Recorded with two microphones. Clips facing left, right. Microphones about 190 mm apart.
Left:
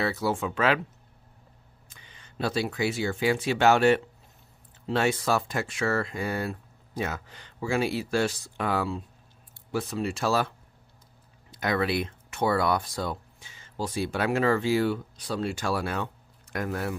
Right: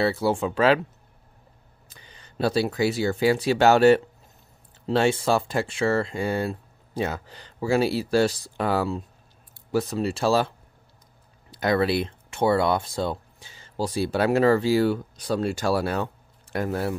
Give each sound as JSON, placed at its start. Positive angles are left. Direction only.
{"t": 0.0, "sound": "speech", "side_deg": -30}
{"t": 1.9, "sound": "speech", "side_deg": -35}
{"t": 11.5, "sound": "speech", "side_deg": -35}